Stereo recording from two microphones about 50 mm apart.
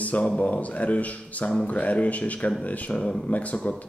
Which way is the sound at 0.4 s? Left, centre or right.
Left.